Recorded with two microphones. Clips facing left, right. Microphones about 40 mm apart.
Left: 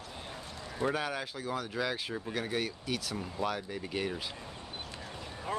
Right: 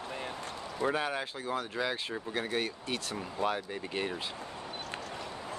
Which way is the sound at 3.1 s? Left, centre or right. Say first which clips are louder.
Right 4 dB; centre.